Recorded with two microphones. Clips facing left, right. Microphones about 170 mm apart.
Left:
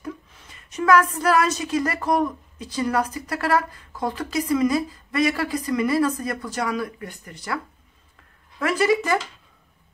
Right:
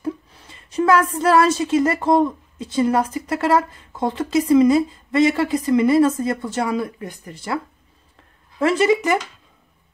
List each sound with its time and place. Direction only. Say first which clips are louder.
0.0 s a woman's voice: right 7 dB; 30° right (ahead or behind)